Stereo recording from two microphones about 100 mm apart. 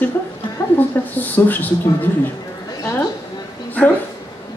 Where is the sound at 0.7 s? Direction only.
20° left (ahead or behind).